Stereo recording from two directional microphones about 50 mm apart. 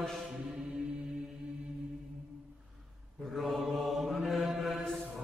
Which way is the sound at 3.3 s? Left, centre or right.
Centre.